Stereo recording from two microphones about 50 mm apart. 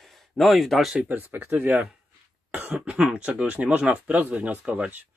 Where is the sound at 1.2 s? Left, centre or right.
Right.